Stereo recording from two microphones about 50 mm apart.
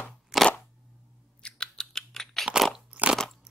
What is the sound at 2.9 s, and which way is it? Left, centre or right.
Crunch, right.